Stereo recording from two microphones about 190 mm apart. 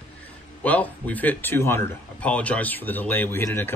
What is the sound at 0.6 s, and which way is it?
Speech, 10° left (ahead or behind).